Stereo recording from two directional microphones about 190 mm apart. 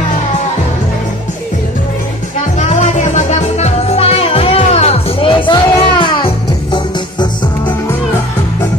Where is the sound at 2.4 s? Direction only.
40° left (ahead or behind); by 7.5 s 25° left (ahead or behind).